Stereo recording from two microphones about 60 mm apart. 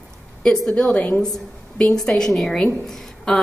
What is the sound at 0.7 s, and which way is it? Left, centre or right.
Speech, centre.